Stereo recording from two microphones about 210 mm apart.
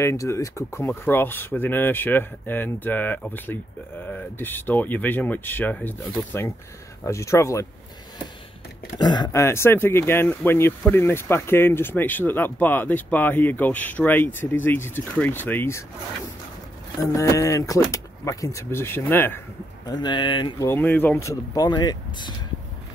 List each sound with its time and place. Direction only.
0.0 s speech: 15° left (ahead or behind)
8.9 s speech: 20° left (ahead or behind)
17.0 s speech: 15° left (ahead or behind)
19.9 s speech: 20° left (ahead or behind)